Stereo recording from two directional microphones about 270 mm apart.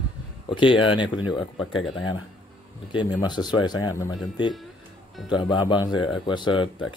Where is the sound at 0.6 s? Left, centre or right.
Centre.